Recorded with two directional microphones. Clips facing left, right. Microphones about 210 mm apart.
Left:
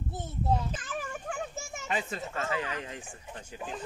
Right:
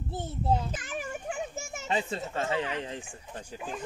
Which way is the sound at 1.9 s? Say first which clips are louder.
Right 3 dB; 30° right (ahead or behind).